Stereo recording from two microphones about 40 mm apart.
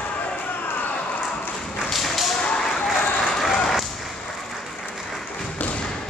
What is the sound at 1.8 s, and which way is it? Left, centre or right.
Tap, centre.